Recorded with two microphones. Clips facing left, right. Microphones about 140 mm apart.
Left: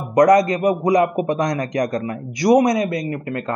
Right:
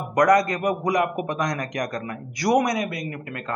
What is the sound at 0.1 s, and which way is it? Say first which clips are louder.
A man's voice: left 5 dB; 25° left (ahead or behind).